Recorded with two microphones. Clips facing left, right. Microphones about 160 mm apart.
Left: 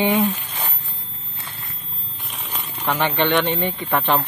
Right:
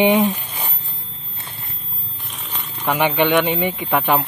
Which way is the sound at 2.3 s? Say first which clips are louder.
Left 1 dB; 5° left (ahead or behind).